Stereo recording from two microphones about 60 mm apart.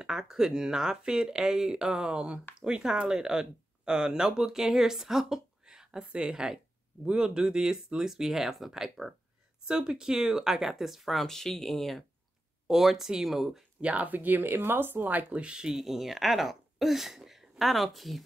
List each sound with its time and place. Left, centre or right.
0.0 s speech: centre
13.7 s speech: right
15.7 s speech: centre